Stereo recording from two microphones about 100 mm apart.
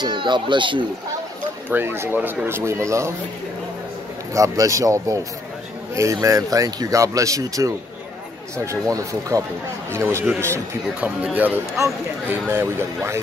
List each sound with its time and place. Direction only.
0.0 s speech: 50° right (ahead or behind)
1.7 s speech: 20° right (ahead or behind)
4.3 s speech: 35° right (ahead or behind)
6.2 s speech: 35° right (ahead or behind)
9.3 s speech: 25° right (ahead or behind)
11.0 s speech: 15° right (ahead or behind)